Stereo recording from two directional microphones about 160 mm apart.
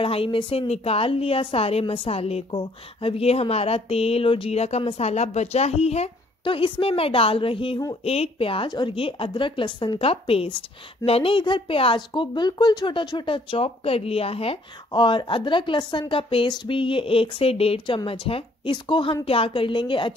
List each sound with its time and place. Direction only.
0.0 s speech: 35° left (ahead or behind)